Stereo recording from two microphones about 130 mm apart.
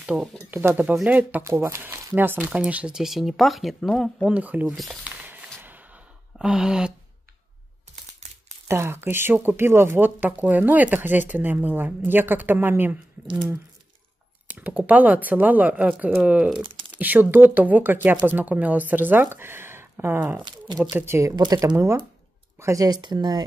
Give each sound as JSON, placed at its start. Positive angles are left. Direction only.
{"t": 0.0, "sound": "speech", "side_deg": -10}
{"t": 4.3, "sound": "speech", "side_deg": -10}
{"t": 4.7, "sound": "a sound", "side_deg": -5}
{"t": 8.6, "sound": "speech", "side_deg": -20}
{"t": 14.5, "sound": "speech", "side_deg": -10}
{"t": 20.4, "sound": "speech", "side_deg": -35}
{"t": 21.0, "sound": "speech", "side_deg": -20}